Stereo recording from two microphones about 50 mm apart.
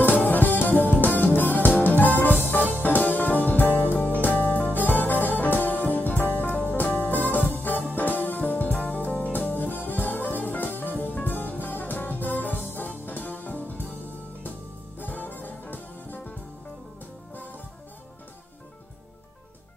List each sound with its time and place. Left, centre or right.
0.0 s music: left
15.0 s music: left